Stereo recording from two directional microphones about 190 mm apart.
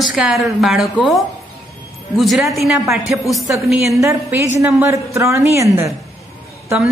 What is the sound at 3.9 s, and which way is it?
Speech, 15° right (ahead or behind).